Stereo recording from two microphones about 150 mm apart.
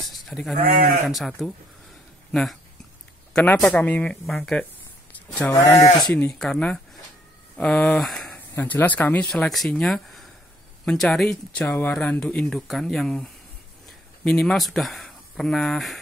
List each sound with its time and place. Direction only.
0.1 s speech: centre (ahead or behind)
0.6 s speech: 85° right
1.0 s speech: centre (ahead or behind)
3.3 s speech: 5° left (ahead or behind)
5.1 s a sound: 10° left (ahead or behind)
5.5 s speech: 20° left (ahead or behind)
6.0 s speech: 5° left (ahead or behind)
8.5 s speech: 10° left (ahead or behind)